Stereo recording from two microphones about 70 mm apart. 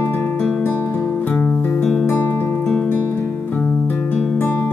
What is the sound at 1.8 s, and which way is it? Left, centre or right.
Music, centre.